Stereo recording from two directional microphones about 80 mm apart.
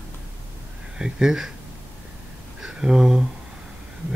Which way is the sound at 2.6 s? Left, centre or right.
Centre.